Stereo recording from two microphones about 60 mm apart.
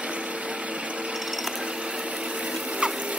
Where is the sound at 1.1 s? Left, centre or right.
Centre.